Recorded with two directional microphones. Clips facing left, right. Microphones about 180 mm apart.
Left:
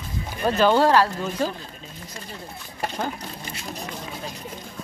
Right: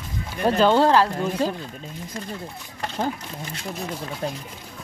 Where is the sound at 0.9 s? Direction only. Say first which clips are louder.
Right 1 dB; 25° right (ahead or behind).